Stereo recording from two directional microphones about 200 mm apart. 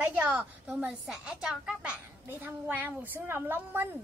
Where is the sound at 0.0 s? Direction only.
5° right (ahead or behind).